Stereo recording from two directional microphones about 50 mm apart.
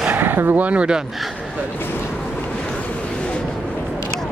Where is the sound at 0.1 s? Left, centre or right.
Right.